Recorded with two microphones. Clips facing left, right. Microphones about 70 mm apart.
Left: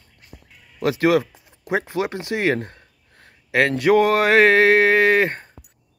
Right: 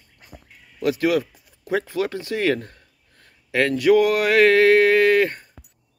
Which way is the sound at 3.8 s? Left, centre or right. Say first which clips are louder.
Even; left.